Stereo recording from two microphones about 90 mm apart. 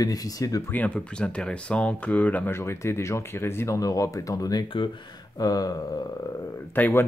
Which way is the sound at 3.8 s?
40° left (ahead or behind).